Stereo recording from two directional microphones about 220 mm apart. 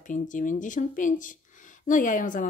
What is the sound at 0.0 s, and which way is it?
Speech, 35° left (ahead or behind).